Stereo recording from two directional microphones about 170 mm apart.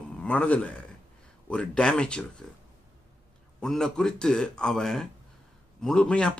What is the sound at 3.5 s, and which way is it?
Speech, 5° left (ahead or behind).